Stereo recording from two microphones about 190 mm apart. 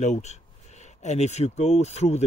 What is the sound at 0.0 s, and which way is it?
Speech, 35° left (ahead or behind).